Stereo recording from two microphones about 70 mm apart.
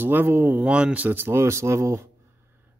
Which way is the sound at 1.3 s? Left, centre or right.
Right.